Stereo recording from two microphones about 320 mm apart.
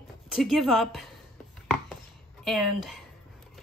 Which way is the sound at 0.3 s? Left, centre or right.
Centre.